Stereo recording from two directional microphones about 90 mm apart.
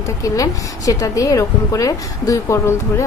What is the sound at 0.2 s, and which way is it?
A woman's voice, 40° left (ahead or behind).